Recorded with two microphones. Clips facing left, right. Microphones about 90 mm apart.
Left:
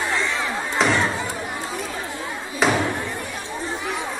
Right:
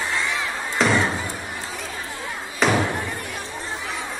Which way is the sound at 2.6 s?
5° left (ahead or behind).